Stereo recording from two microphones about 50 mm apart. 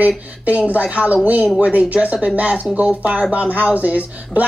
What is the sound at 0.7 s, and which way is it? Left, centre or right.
Speech, right.